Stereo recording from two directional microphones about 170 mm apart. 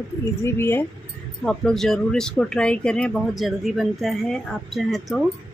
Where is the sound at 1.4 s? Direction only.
5° left (ahead or behind).